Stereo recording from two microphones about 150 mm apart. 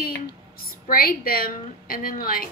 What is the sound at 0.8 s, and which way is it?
A woman's voice, 75° left (ahead or behind).